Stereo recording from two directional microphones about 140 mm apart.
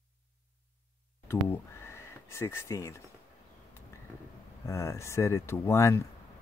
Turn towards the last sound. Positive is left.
turn(degrees=20)  # may be behind; listen again after turning